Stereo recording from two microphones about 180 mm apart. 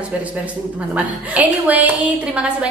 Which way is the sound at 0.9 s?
10° right (ahead or behind).